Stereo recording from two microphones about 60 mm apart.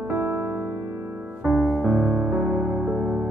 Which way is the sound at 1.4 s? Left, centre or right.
Centre.